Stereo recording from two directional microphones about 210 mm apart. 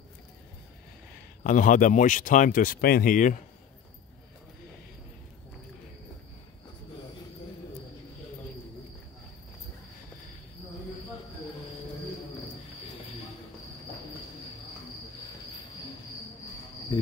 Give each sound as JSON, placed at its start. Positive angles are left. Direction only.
{"t": 1.4, "sound": "speech", "side_deg": 40}